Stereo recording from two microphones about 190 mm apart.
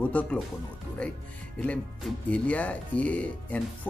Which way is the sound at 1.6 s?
5° left (ahead or behind).